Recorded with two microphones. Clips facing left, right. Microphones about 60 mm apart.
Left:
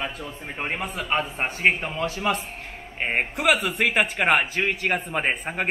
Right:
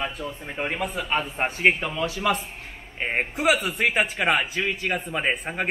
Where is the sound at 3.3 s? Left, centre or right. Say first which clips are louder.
Even; centre.